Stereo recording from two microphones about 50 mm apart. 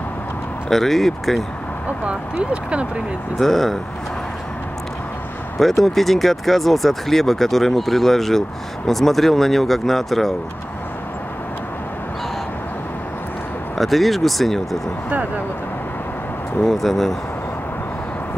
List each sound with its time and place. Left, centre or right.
0.7 s speech: centre
2.0 s speech: right
3.3 s speech: centre
5.6 s speech: centre
13.7 s speech: centre
16.6 s speech: centre